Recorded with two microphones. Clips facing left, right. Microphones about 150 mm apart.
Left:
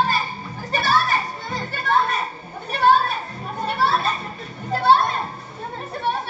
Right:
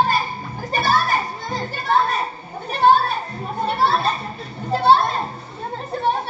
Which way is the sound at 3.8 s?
30° right (ahead or behind).